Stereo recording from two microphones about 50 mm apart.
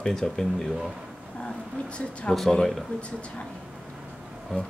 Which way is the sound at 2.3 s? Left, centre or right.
Centre.